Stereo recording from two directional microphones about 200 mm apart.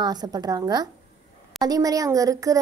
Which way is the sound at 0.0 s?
20° right (ahead or behind).